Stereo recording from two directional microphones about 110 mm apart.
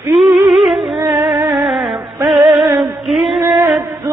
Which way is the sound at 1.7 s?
Centre (ahead or behind).